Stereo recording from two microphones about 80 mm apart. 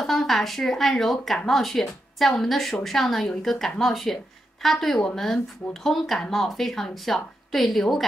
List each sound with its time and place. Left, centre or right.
0.0 s speech: centre